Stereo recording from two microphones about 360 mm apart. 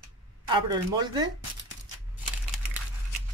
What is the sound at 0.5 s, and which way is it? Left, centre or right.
Speech, centre.